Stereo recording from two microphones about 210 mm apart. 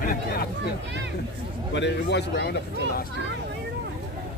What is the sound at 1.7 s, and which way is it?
Speech, 55° left (ahead or behind).